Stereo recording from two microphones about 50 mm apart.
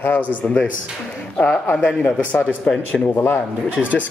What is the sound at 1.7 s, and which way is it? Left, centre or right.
Speech, left.